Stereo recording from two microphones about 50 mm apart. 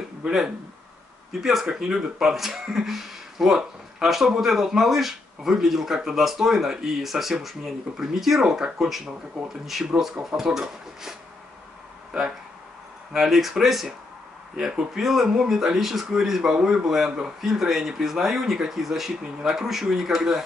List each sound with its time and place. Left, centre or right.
0.2 s speech: centre
1.4 s speech: centre
13.1 s speech: centre